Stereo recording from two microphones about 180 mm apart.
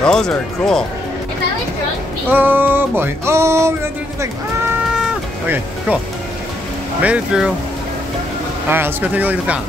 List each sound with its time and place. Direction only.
0.0 s speech: 5° left (ahead or behind)
2.2 s music: 10° right (ahead or behind)
7.0 s music: 5° right (ahead or behind)
8.6 s music: 10° right (ahead or behind)